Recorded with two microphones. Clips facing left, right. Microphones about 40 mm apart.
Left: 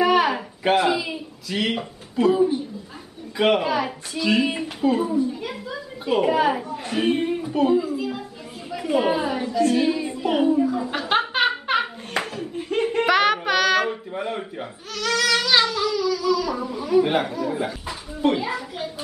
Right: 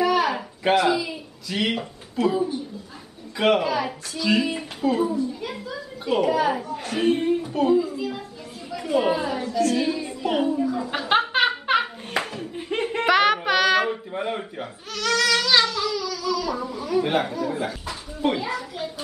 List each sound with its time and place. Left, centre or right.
0.0 s a sound: left
0.7 s a man's voice: centre
1.5 s speech: centre
2.2 s a man's voice: left
3.3 s a child's voice: centre
5.1 s a child's voice: centre
5.5 s a child's voice: centre
6.2 s a man's voice: left
6.5 s a child's voice: centre
10.9 s hands: centre
12.5 s a sound: centre
12.9 s speech: centre